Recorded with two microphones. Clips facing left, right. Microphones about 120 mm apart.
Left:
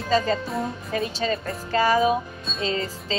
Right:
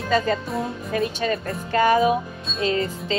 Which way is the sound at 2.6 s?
30° left (ahead or behind).